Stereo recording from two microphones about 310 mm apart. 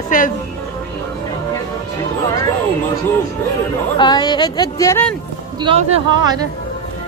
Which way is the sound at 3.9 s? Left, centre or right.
Centre.